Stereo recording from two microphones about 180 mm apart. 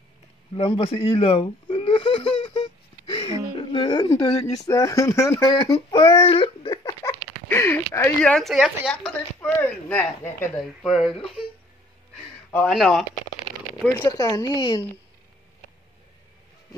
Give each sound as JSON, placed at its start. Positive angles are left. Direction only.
{"t": 0.6, "sound": "a sound", "side_deg": 30}
{"t": 3.5, "sound": "speech", "side_deg": 25}
{"t": 10.6, "sound": "speech", "side_deg": 0}
{"t": 12.6, "sound": "speech", "side_deg": 0}
{"t": 13.8, "sound": "speech", "side_deg": 15}